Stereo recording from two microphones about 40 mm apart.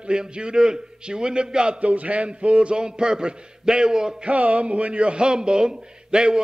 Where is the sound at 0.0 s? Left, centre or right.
Right.